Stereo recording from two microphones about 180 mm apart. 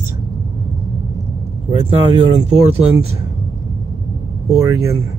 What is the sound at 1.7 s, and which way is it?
Speech, 35° right (ahead or behind).